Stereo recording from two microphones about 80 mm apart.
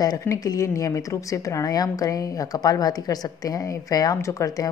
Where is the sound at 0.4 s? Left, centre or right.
Left.